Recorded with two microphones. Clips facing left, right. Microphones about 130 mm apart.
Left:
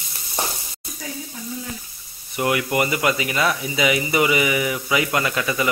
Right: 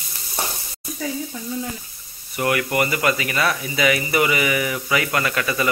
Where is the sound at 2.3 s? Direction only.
15° left (ahead or behind).